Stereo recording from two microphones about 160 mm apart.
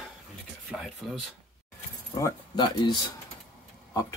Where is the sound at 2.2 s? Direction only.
25° left (ahead or behind).